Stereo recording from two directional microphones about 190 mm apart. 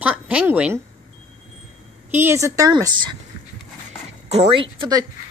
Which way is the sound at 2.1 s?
10° right (ahead or behind).